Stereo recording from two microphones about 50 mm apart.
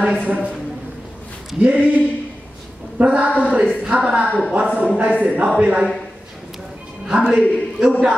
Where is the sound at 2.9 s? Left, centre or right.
Right.